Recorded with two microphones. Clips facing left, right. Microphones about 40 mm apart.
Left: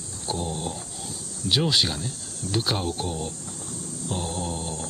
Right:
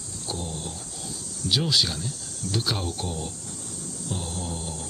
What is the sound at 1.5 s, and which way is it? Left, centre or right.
Speech, centre.